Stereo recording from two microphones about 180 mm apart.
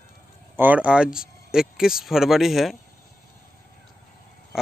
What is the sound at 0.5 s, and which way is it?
Speech, 10° right (ahead or behind).